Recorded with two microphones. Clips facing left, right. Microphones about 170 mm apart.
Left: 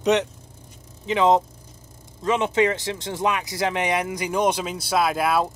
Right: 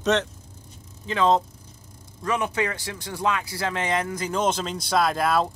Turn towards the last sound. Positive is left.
turn(degrees=5)  # may be behind; listen again after turning